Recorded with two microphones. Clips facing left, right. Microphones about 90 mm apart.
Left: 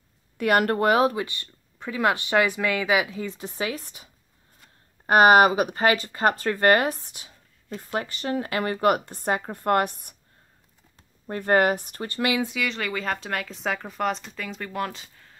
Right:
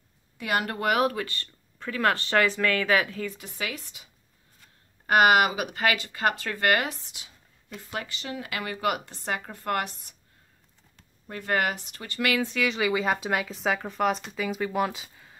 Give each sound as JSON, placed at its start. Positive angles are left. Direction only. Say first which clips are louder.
{"t": 0.4, "sound": "speech", "louder": "left 7 dB", "side_deg": 50}
{"t": 0.7, "sound": "speech", "louder": "left 4 dB", "side_deg": 30}
{"t": 3.3, "sound": "speech", "louder": "left 5 dB", "side_deg": 30}
{"t": 11.2, "sound": "speech", "louder": "left 6 dB", "side_deg": 40}
{"t": 12.4, "sound": "speech", "louder": "right 3 dB", "side_deg": 0}